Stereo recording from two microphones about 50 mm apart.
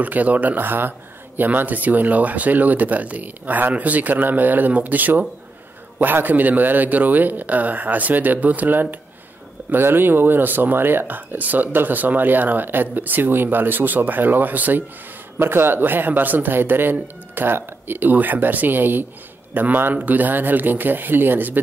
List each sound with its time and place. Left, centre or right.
0.0 s speech: right
9.7 s speech: right
15.3 s speech: right